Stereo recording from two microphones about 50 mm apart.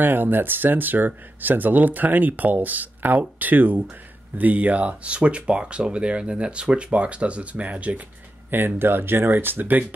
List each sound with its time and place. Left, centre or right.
0.0 s speech: right
8.5 s speech: right